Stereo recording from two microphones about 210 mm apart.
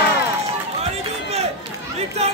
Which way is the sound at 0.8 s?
30° right (ahead or behind).